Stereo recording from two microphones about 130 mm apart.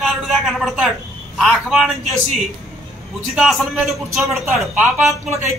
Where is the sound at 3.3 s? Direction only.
Centre (ahead or behind).